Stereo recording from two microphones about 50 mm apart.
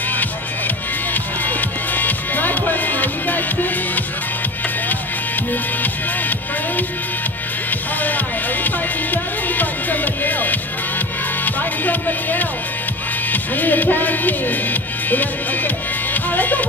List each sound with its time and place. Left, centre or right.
1.1 s music: left
5.5 s music: left
8.6 s music: left